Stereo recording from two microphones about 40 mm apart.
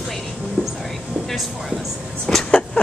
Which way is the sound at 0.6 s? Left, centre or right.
Left.